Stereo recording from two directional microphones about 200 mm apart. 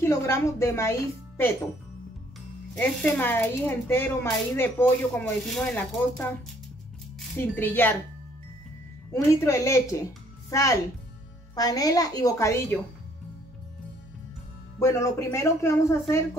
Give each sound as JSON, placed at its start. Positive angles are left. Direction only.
{"t": 0.0, "sound": "speech", "side_deg": 15}
{"t": 2.7, "sound": "speech", "side_deg": 5}
{"t": 7.3, "sound": "speech", "side_deg": 10}
{"t": 9.1, "sound": "speech", "side_deg": 15}
{"t": 14.8, "sound": "speech", "side_deg": 15}